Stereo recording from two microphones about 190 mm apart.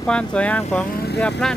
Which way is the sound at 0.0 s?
5° left (ahead or behind).